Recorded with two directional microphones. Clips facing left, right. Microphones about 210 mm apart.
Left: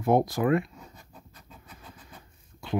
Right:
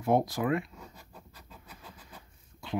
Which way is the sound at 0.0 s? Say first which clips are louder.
Left 4 dB; 50° left (ahead or behind).